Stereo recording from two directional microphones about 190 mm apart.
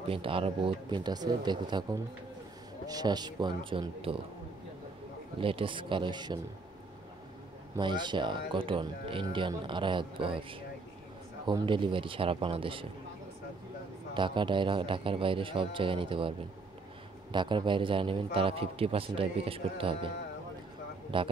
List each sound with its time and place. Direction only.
0.0 s speech: 30° right (ahead or behind)
5.4 s speech: 30° right (ahead or behind)
7.7 s speech: 25° right (ahead or behind)
14.1 s speech: 25° right (ahead or behind)
21.1 s speech: 25° right (ahead or behind)